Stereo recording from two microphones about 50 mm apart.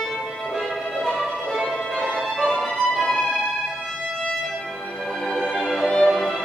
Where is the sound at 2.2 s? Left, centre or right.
Centre.